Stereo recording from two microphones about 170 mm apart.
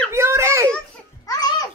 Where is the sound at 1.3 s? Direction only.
25° left (ahead or behind).